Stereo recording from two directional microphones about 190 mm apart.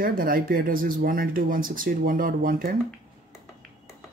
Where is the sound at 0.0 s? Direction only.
50° right (ahead or behind).